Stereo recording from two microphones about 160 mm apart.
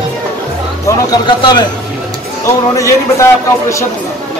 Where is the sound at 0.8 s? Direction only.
30° left (ahead or behind).